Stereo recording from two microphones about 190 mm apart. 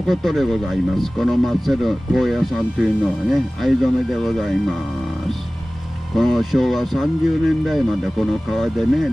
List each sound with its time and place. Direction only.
0.0 s speech: centre (ahead or behind)
6.1 s speech: centre (ahead or behind)